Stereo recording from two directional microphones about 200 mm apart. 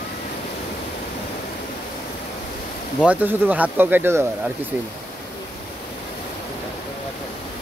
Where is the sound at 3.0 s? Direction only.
10° right (ahead or behind).